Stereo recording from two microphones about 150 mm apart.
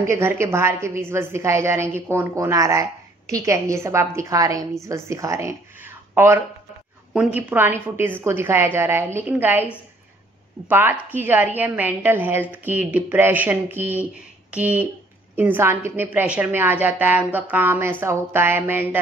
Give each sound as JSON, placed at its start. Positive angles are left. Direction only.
{"t": 0.1, "sound": "a woman's voice", "side_deg": -15}
{"t": 10.7, "sound": "a woman's voice", "side_deg": -15}